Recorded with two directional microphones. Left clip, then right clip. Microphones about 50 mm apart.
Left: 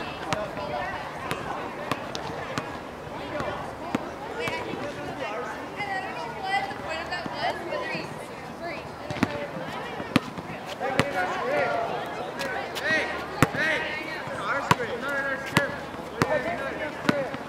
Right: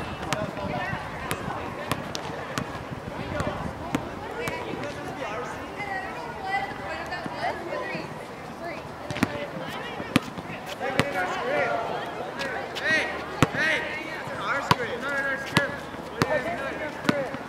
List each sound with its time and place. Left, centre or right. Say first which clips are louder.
0.3 s run: even; right
6.4 s a sound: left 1 dB; left
9.2 s basketball bounce: even; right
10.1 s fireworks: even; right
11.2 s basketball bounce: even; right
12.8 s basketball bounce: right 2 dB; right
13.6 s chop: right 1 dB; right
14.4 s basketball bounce: even; right
15.6 s basketball bounce: even; centre
16.2 s basketball bounce: even; centre
17.1 s basketball bounce: even; centre